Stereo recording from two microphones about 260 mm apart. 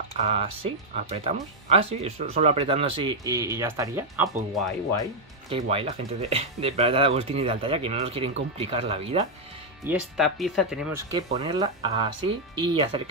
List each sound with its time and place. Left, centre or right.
0.1 s speech: right
5.5 s speech: right
9.8 s speech: centre